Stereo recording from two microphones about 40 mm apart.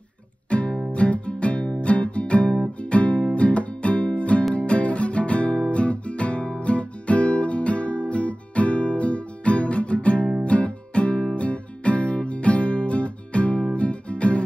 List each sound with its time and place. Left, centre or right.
0.5 s music: left
5.6 s guitar: left
10.4 s music: left